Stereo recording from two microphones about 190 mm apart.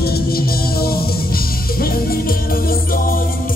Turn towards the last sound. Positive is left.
turn(degrees=50)  # may be behind; listen again after turning